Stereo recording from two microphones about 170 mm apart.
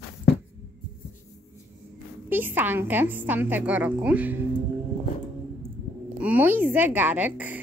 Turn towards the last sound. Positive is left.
turn(degrees=-10)  # may be behind; listen again after turning